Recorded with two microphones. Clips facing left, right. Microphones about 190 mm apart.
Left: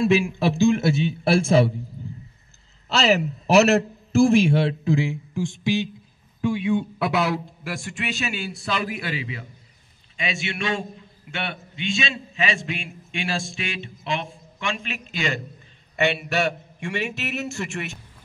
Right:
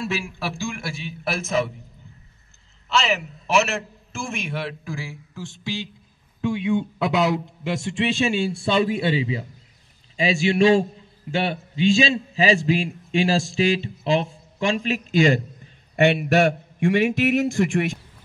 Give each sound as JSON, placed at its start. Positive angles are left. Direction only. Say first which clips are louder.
{"t": 0.0, "sound": "a man's voice", "louder": "left 8 dB", "side_deg": 15}
{"t": 2.9, "sound": "a man's voice", "louder": "left 3 dB", "side_deg": 35}
{"t": 7.0, "sound": "a man's voice", "louder": "right 2 dB", "side_deg": -20}